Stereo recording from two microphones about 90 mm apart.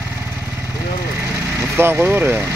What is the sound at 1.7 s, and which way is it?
Speech, 25° right (ahead or behind).